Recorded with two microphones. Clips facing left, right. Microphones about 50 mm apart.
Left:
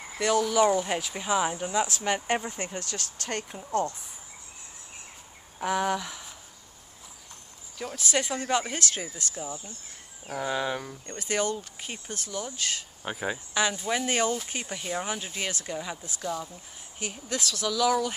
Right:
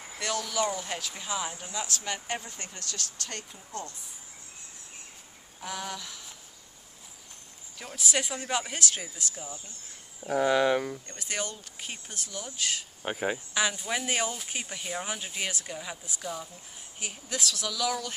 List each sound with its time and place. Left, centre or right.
0.2 s speech: centre; by 3.4 s left
5.7 s speech: left
7.8 s speech: centre
10.4 s speech: right
11.1 s speech: centre
13.0 s speech: right
13.5 s speech: centre